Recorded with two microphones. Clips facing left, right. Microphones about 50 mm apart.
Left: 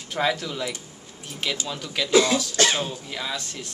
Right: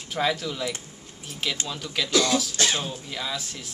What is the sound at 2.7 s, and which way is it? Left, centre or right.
Speech, centre.